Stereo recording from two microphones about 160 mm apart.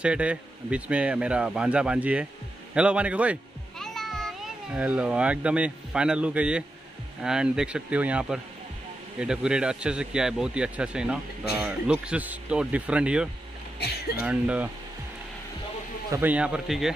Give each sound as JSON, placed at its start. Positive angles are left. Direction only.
{"t": 0.0, "sound": "speech", "side_deg": -5}
{"t": 3.7, "sound": "a child's voice", "side_deg": 0}
{"t": 13.7, "sound": "speech", "side_deg": 80}
{"t": 14.2, "sound": "speech", "side_deg": -10}
{"t": 16.1, "sound": "speech", "side_deg": -10}